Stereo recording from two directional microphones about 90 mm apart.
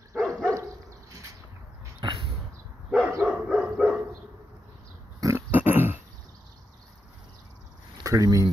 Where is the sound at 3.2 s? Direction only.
15° right (ahead or behind).